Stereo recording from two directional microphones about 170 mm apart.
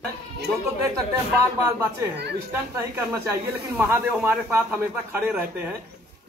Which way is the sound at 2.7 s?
15° right (ahead or behind).